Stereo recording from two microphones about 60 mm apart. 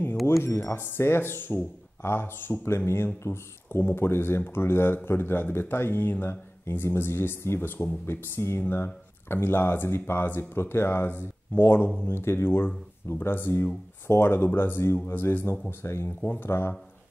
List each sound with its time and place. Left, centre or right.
0.4 s speech: left